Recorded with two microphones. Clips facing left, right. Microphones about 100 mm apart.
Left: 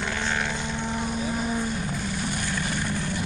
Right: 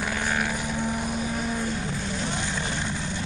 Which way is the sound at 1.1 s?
5° left (ahead or behind).